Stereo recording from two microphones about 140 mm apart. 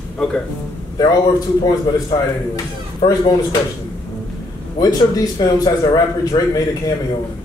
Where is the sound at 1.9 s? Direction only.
25° left (ahead or behind).